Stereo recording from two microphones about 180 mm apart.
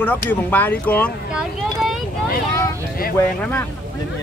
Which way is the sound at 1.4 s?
5° right (ahead or behind).